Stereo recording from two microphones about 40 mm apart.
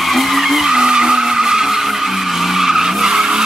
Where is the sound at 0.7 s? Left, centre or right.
Centre.